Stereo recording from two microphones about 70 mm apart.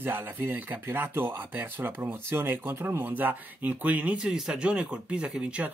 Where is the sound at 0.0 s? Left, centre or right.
Right.